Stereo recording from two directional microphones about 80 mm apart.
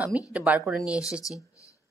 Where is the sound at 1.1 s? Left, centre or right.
Centre.